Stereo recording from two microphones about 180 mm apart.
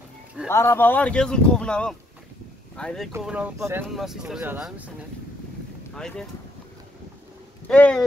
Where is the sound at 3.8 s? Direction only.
Centre (ahead or behind).